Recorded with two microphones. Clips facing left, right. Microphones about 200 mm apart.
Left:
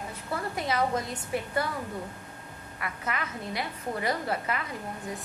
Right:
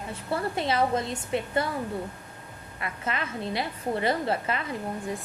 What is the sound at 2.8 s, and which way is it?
A woman's voice, 25° right (ahead or behind).